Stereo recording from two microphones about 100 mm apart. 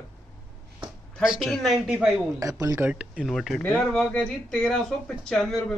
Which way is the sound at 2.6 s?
30° right (ahead or behind).